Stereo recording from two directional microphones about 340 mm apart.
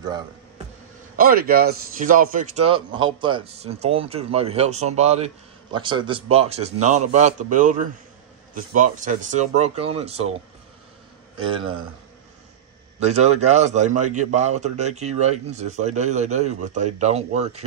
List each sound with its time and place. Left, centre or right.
1.1 s a man's voice: right
13.0 s a man's voice: centre